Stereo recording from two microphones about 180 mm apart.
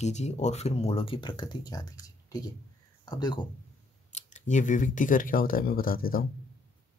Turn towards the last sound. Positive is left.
turn(degrees=55)  # may be behind; listen again after turning